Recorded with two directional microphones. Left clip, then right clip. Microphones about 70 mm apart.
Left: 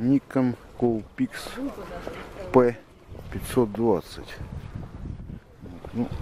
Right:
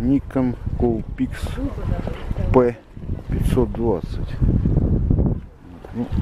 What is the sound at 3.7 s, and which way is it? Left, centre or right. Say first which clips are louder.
Speech: right 1 dB; left.